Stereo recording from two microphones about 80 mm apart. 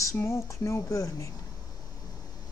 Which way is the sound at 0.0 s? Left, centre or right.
Left.